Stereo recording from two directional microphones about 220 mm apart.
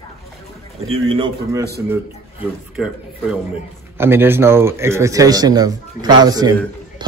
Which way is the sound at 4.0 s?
10° right (ahead or behind).